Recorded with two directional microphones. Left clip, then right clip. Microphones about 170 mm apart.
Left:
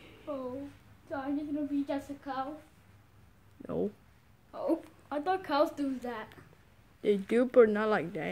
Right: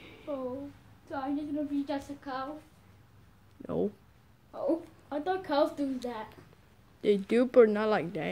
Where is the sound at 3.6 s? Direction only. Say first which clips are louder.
Right 2 dB; 5° right (ahead or behind).